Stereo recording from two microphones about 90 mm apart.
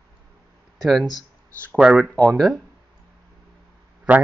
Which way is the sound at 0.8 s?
Centre (ahead or behind).